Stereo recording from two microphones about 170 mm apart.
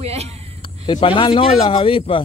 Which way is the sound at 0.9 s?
30° left (ahead or behind).